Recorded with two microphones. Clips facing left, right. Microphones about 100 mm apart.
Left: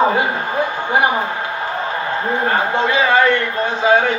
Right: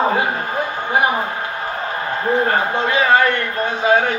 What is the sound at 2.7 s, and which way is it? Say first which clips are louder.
A man's voice: left 1 dB; 20° left (ahead or behind).